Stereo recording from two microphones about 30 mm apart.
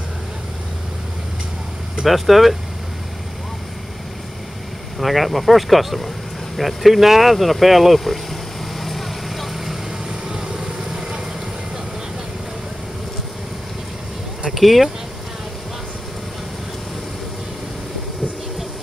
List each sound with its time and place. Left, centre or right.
2.0 s speech: centre
4.9 s speech: centre
6.5 s vehicle: centre
10.2 s vehicle: right
14.5 s speech: centre